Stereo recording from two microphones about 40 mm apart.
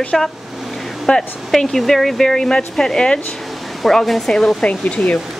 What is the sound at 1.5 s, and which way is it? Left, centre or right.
Speech, centre.